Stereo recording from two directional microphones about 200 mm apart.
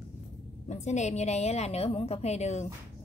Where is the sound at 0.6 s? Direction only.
35° left (ahead or behind).